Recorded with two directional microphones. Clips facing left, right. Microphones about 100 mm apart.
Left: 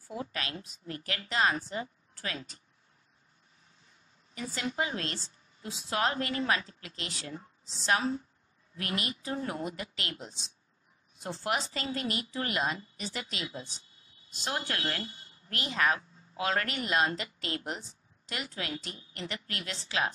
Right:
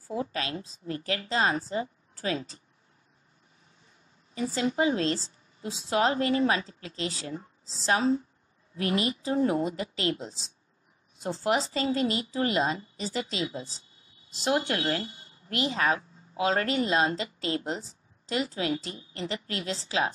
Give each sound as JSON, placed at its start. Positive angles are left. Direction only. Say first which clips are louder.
{"t": 0.1, "sound": "a woman's voice", "louder": "right 6 dB", "side_deg": -30}
{"t": 4.4, "sound": "a woman's voice", "louder": "right 7 dB", "side_deg": -30}